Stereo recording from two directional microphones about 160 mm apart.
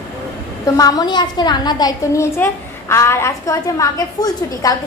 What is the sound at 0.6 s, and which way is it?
A woman's voice, 20° left (ahead or behind).